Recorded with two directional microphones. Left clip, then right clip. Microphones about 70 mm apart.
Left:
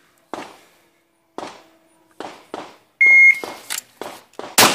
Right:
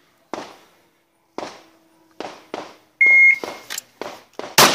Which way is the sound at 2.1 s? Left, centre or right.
Centre.